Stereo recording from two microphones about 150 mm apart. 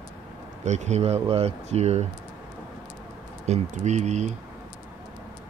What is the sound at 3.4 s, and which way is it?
Speech, 50° right (ahead or behind).